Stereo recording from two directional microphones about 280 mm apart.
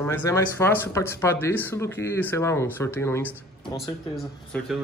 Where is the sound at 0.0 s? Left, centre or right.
Centre.